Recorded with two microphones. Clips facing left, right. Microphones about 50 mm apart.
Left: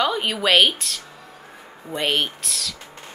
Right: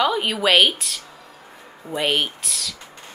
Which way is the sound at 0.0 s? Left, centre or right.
Centre.